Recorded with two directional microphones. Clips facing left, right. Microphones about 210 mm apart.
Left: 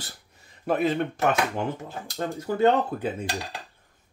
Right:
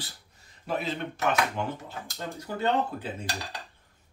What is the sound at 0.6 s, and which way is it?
A man's voice, 50° left (ahead or behind).